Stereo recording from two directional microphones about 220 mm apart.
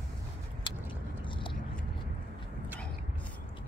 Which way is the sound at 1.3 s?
20° left (ahead or behind).